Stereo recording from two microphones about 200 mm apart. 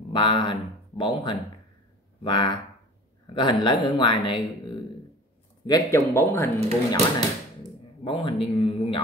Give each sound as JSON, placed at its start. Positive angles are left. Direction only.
{"t": 0.1, "sound": "speech", "side_deg": 25}
{"t": 5.7, "sound": "speech", "side_deg": 15}
{"t": 8.0, "sound": "speech", "side_deg": 25}